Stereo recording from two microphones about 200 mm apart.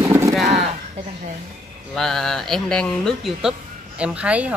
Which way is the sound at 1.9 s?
Centre (ahead or behind).